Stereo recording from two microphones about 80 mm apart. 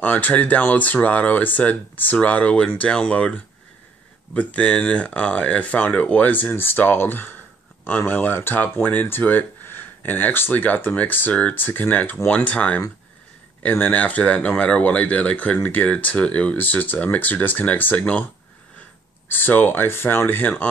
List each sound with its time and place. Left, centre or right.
0.0 s speech: left
19.2 s speech: left